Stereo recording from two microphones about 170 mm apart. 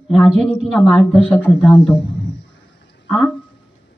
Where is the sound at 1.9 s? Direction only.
90° left.